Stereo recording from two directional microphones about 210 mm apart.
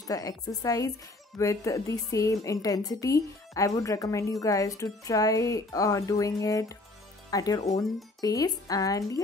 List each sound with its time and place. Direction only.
0.0 s a woman's voice: 15° left (ahead or behind)